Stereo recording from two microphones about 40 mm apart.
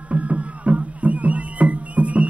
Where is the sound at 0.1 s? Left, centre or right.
Right.